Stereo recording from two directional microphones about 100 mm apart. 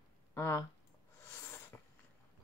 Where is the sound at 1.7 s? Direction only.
20° left (ahead or behind).